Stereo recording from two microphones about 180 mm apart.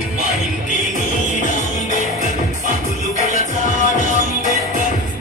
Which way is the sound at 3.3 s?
45° left (ahead or behind).